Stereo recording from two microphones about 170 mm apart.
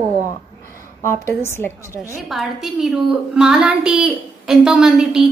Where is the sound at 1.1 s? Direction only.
15° left (ahead or behind).